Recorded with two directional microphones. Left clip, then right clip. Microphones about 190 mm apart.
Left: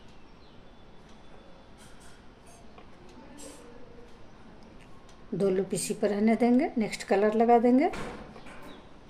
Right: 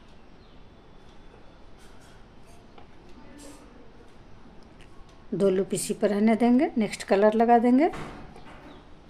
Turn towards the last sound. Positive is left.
turn(degrees=-35)  # may be behind; listen again after turning